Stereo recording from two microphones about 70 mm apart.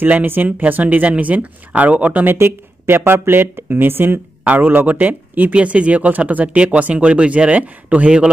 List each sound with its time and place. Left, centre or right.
0.0 s speech: right
2.3 s speech: right; by 8.3 s centre